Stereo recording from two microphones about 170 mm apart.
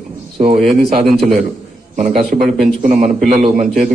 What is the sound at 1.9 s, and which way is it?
Speech, 45° right (ahead or behind).